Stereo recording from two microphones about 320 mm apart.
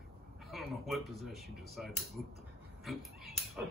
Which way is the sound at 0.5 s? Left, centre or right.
Centre.